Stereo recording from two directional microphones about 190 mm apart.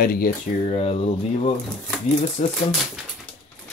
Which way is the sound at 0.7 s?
35° left (ahead or behind).